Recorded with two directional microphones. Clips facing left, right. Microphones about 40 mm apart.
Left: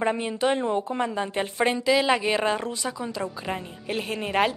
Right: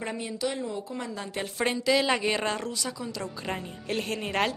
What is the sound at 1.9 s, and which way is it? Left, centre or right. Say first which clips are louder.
Speech: left 2 dB; centre.